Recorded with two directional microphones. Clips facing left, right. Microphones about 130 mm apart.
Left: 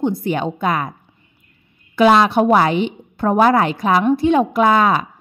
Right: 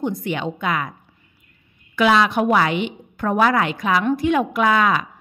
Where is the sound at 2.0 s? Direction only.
35° left (ahead or behind).